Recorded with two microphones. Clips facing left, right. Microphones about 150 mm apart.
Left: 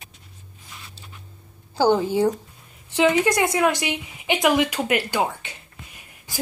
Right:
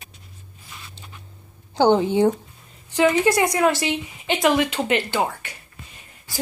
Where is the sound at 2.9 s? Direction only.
15° left (ahead or behind).